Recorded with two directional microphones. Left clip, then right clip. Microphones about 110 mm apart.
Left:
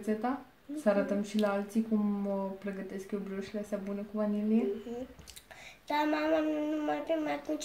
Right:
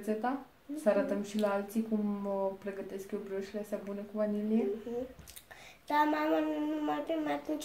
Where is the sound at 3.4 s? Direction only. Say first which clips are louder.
Even; 25° left (ahead or behind).